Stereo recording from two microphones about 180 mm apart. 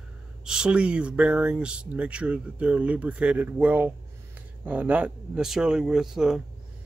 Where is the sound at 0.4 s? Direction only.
5° right (ahead or behind).